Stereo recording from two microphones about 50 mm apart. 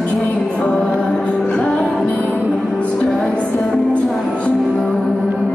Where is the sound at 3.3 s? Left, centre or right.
Left.